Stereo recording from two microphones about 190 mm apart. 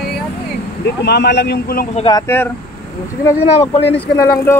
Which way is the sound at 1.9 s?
25° left (ahead or behind).